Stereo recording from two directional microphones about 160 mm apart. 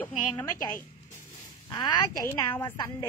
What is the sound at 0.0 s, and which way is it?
A woman's voice, 20° left (ahead or behind).